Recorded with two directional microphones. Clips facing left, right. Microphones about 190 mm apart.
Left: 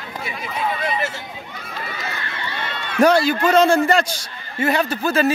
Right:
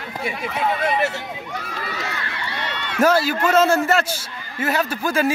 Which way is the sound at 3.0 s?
5° right (ahead or behind).